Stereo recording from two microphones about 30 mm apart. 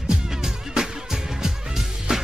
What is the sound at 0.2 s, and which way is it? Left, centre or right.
Music, centre.